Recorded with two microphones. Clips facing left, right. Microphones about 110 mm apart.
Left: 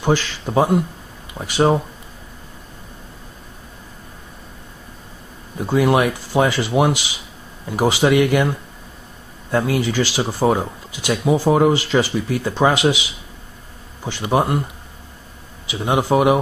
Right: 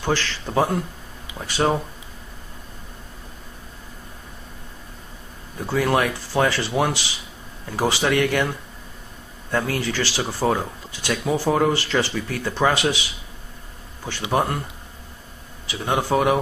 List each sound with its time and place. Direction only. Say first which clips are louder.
0.0 s speech: left 5 dB; 15° left (ahead or behind)
5.6 s speech: left 4 dB; 15° left (ahead or behind)
14.3 s speech: left 4 dB; 15° left (ahead or behind)
15.7 s speech: left 4 dB; 15° left (ahead or behind)